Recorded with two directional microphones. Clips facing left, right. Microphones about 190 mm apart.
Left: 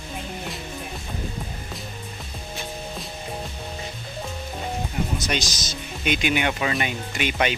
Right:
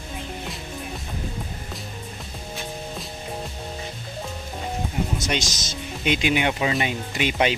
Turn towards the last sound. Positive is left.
turn(degrees=-30)  # may be behind; listen again after turning